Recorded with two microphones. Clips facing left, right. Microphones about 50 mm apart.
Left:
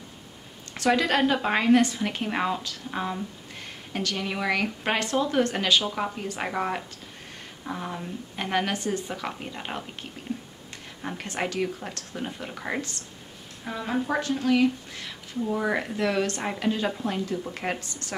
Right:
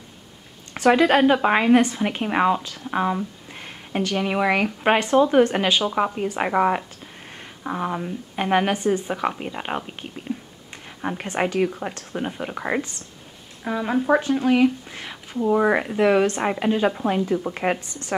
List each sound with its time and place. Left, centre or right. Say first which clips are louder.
0.9 s a woman's voice: right 7 dB; right
11.0 s a woman's voice: right 6 dB; right
15.4 s speech: right 8 dB; right
15.8 s a woman's voice: right 8 dB; right